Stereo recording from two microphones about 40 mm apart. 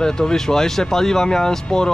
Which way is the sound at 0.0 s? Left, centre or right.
Centre.